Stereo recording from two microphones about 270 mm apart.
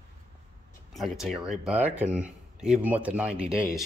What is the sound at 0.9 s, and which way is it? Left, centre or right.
Speech, centre.